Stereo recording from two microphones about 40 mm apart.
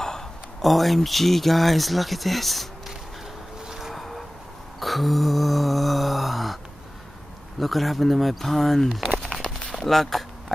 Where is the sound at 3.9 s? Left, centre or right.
Centre.